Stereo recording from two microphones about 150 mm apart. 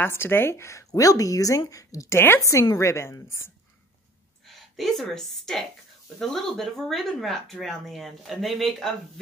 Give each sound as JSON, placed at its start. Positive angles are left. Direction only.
{"t": 0.0, "sound": "speech", "side_deg": 15}
{"t": 4.5, "sound": "a woman's voice", "side_deg": 0}